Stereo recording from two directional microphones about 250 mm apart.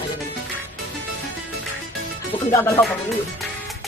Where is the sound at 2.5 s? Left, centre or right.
Centre.